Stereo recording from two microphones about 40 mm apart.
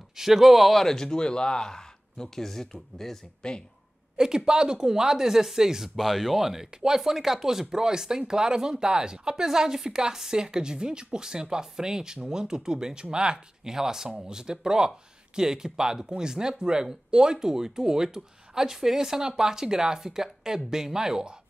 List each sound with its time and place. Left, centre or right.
0.1 s speech: centre
4.5 s speech: centre
5.9 s speech: centre